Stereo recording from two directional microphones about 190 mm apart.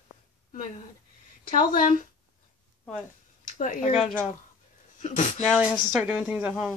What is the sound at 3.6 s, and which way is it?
Speech, 40° left (ahead or behind).